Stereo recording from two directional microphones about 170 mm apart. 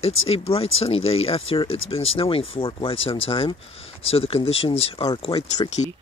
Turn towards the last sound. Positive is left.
turn(degrees=40)  # may be behind; listen again after turning